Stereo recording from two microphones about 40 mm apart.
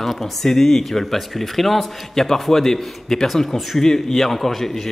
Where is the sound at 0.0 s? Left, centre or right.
Centre.